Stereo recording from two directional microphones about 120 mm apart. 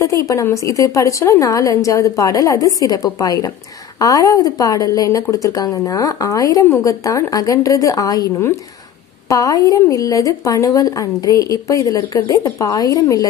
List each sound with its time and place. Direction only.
0.3 s a woman's voice: 25° left (ahead or behind)